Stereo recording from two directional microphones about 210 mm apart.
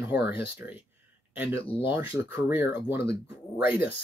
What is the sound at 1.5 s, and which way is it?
Speech, 10° right (ahead or behind).